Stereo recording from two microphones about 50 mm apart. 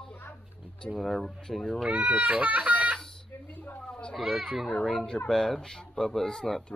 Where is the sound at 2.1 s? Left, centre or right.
Right.